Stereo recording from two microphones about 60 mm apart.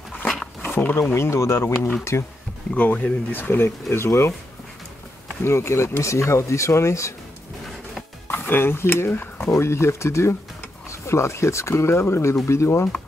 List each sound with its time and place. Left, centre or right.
0.6 s a sound: left
1.1 s speech: left
2.7 s speech: left
5.4 s speech: left
8.3 s speech: left
9.4 s speech: left